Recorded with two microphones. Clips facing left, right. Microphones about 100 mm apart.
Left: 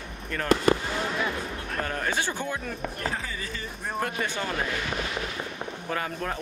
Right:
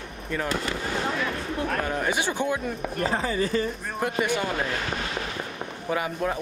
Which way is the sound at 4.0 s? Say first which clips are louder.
Right 4 dB; 15° right (ahead or behind).